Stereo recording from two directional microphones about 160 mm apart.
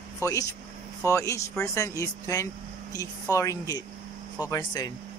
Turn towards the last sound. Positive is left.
turn(degrees=25)  # may be behind; listen again after turning